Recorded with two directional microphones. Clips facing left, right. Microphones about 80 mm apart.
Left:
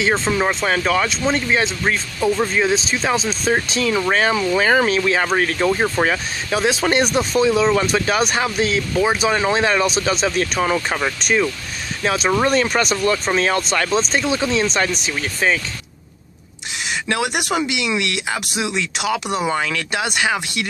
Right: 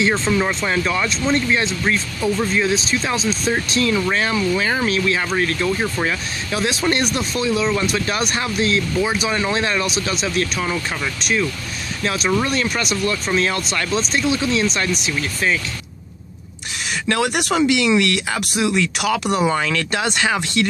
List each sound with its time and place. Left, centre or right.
0.0 s speech: left
4.6 s speech: left
4.8 s speech: left
9.0 s speech: left
12.0 s speech: left
17.1 s speech: centre